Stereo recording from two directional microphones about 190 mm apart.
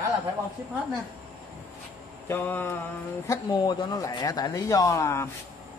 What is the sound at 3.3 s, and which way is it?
Speech, 20° left (ahead or behind).